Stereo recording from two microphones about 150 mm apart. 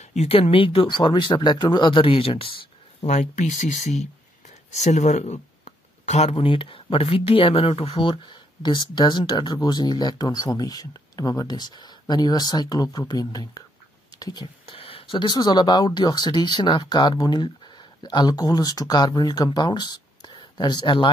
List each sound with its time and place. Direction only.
0.0 s speech: 50° left (ahead or behind); by 21.1 s 30° left (ahead or behind)